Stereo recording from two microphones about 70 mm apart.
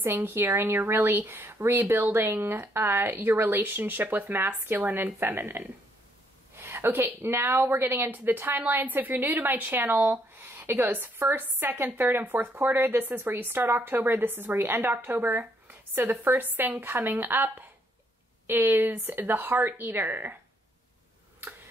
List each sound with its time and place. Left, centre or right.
0.0 s speech: right